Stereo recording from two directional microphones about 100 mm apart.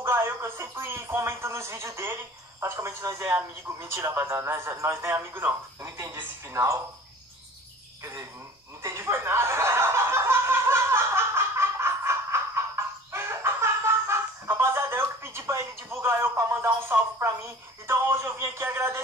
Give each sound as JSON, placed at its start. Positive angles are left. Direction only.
{"t": 0.0, "sound": "speech", "side_deg": -25}
{"t": 8.8, "sound": "snicker", "side_deg": -25}
{"t": 17.8, "sound": "speech", "side_deg": -25}